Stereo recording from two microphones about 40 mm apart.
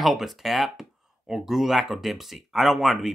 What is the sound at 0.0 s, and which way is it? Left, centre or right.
Speech, centre.